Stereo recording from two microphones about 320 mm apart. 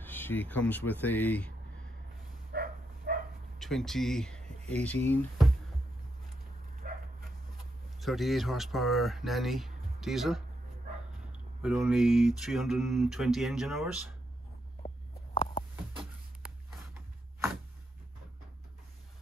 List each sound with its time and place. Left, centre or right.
0.0 s speech: centre
2.5 s bow-wow: right
3.5 s speech: centre
6.8 s dog: right
8.0 s speech: centre
11.6 s speech: centre